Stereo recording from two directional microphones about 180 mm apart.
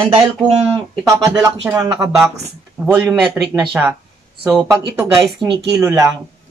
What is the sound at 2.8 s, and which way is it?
A woman's voice, 10° right (ahead or behind).